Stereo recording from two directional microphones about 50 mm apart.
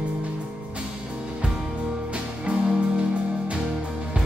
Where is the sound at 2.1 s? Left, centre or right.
Right.